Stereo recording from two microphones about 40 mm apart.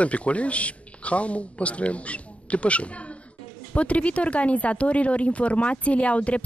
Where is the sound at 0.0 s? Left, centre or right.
Left.